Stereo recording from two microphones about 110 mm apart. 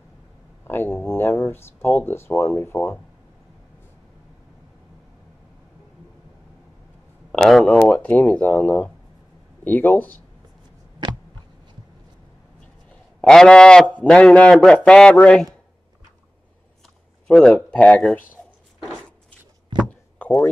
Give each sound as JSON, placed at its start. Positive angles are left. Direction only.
{"t": 0.7, "sound": "speech", "side_deg": 20}
{"t": 7.3, "sound": "speech", "side_deg": 5}
{"t": 13.3, "sound": "speech", "side_deg": 5}
{"t": 17.3, "sound": "speech", "side_deg": 5}
{"t": 19.8, "sound": "chop", "side_deg": 10}